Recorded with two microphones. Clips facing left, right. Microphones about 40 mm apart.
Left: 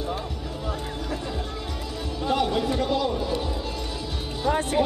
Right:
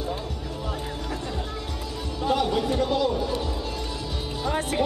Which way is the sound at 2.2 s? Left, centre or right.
Centre.